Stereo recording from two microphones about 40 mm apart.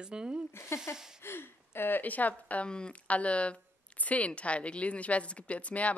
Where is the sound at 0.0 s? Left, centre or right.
Right.